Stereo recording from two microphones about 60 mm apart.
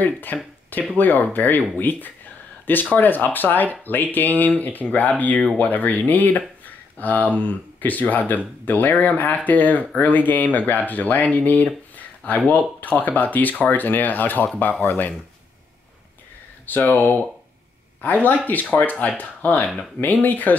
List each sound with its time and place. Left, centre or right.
0.0 s speech: left
12.8 s speech: left
16.6 s speech: left